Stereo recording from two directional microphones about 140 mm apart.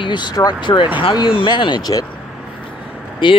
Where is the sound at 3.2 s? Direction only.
35° left (ahead or behind).